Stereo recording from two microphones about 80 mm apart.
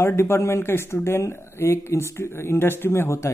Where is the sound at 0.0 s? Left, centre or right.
Left.